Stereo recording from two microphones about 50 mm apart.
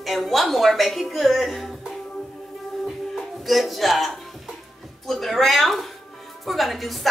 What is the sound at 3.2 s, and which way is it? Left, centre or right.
Speech, centre.